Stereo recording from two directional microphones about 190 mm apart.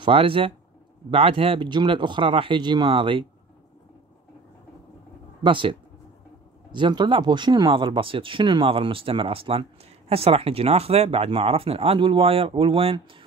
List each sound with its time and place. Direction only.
0.0 s speech: 30° right (ahead or behind)
5.4 s speech: 25° right (ahead or behind)